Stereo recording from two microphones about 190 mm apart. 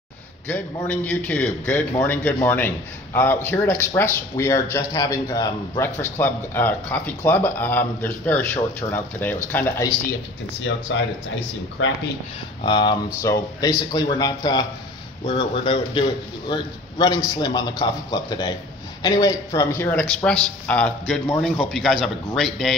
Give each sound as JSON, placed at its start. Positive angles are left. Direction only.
{"t": 0.5, "sound": "a man's voice", "side_deg": 10}
{"t": 10.9, "sound": "speech", "side_deg": 75}
{"t": 11.8, "sound": "speech", "side_deg": 90}
{"t": 12.6, "sound": "a man's voice", "side_deg": 25}